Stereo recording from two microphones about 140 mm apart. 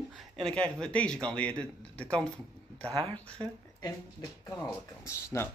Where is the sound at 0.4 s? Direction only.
5° left (ahead or behind).